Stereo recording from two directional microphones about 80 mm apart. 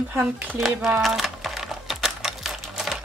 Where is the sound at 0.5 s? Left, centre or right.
Centre.